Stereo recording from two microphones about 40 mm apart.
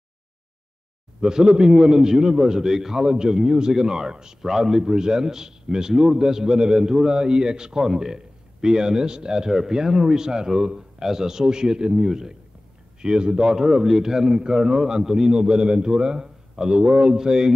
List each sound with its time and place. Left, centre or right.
1.2 s a man's voice: centre
13.6 s a man's voice: centre
15.3 s a man's voice: right